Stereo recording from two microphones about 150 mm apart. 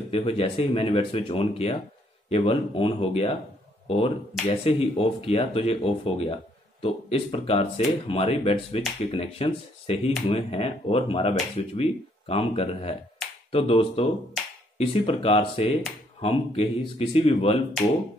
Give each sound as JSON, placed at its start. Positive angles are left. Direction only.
{"t": 0.1, "sound": "speech", "side_deg": 40}
{"t": 4.6, "sound": "speech", "side_deg": 40}